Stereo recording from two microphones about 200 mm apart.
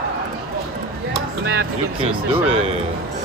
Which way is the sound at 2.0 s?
25° right (ahead or behind).